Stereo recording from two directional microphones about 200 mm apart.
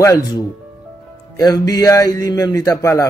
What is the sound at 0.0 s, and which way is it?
A man's voice, 15° left (ahead or behind).